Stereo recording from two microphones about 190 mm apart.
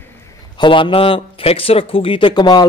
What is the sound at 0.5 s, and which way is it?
A man's voice, 25° left (ahead or behind).